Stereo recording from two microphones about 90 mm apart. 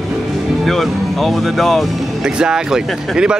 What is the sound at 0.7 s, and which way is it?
Speech, centre (ahead or behind).